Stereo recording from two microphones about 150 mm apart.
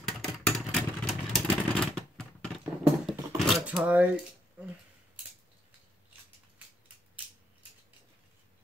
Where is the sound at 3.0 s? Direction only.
Centre (ahead or behind).